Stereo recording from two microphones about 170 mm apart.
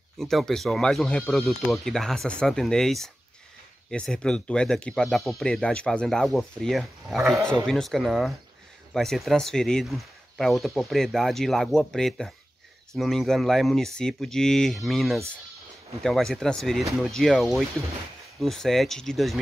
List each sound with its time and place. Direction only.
0.2 s speech: centre (ahead or behind)